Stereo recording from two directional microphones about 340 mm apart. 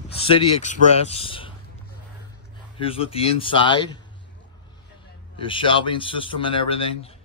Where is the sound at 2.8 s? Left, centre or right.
Centre.